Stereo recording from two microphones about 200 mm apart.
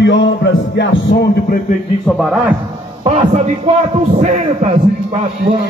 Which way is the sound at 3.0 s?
30° right (ahead or behind).